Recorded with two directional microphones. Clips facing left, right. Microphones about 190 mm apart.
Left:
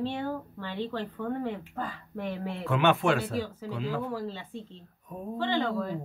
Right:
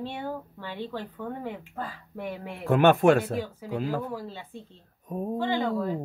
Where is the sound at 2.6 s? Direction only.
45° right (ahead or behind).